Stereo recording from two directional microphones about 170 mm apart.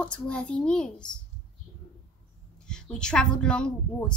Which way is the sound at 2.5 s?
5° left (ahead or behind).